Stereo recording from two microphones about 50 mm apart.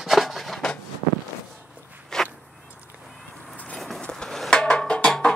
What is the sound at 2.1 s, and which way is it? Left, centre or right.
Walk, centre.